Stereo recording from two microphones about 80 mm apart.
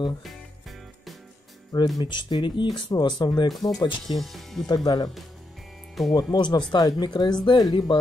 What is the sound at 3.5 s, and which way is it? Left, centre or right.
Speech, centre.